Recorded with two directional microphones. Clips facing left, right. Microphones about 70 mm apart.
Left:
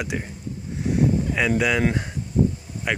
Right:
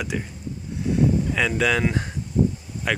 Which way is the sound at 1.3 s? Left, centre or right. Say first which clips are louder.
Left 2 dB; centre.